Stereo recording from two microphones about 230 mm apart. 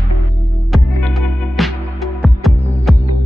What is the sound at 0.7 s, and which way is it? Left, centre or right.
Music, centre.